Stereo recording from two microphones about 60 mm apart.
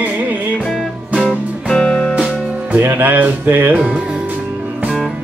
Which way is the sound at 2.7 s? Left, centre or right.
Right.